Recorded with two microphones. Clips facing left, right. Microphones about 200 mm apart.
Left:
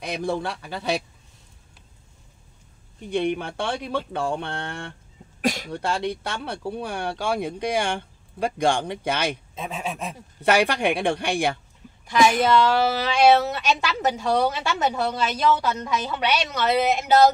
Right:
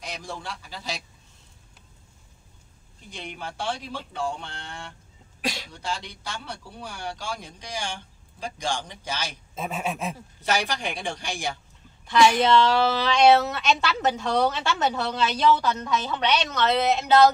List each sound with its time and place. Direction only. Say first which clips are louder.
0.0 s speech: left 10 dB; 60° left (ahead or behind)
3.1 s speech: left 13 dB; 60° left (ahead or behind)
9.6 s speech: right 5 dB; 5° right (ahead or behind)
10.4 s speech: left 7 dB; 60° left (ahead or behind)
12.1 s a woman's voice: even; 15° left (ahead or behind)